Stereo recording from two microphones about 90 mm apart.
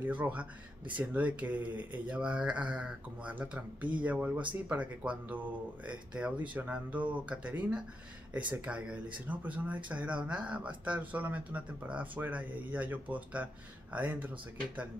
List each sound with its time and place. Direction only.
0.0 s speech: 15° right (ahead or behind)